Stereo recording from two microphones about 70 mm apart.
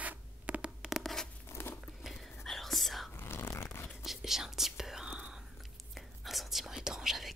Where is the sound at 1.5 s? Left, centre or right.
Left.